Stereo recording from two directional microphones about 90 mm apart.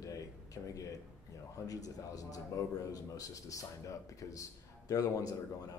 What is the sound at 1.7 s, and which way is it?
A man's voice, 40° left (ahead or behind).